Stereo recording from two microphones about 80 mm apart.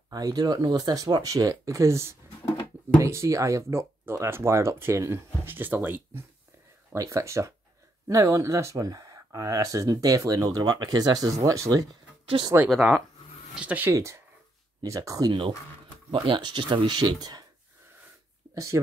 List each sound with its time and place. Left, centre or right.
0.1 s speech: right
7.0 s speech: right
12.6 s speech: centre
13.6 s speech: centre
13.9 s speech: right
16.3 s speech: right
18.5 s speech: right